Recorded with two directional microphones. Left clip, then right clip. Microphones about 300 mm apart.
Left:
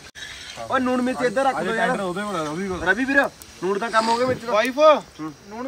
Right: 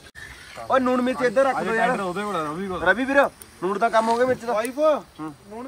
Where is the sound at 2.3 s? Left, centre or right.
Centre; by 4.5 s right.